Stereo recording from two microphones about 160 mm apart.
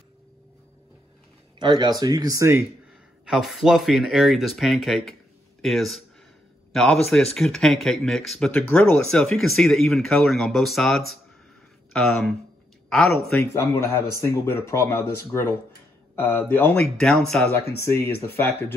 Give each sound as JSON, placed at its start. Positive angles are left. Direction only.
{"t": 1.6, "sound": "speech", "side_deg": -30}
{"t": 3.3, "sound": "speech", "side_deg": 0}
{"t": 13.3, "sound": "speech", "side_deg": 15}